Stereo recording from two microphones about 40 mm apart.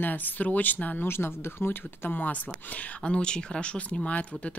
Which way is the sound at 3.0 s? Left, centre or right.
Left.